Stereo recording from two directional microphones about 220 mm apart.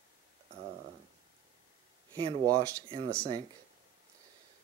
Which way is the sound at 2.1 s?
20° right (ahead or behind).